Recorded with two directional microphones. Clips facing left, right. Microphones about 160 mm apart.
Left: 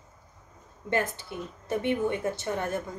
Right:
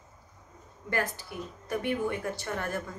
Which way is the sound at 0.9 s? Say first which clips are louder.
Left 3 dB; 20° left (ahead or behind).